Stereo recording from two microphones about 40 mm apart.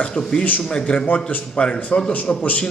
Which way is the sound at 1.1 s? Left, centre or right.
Left.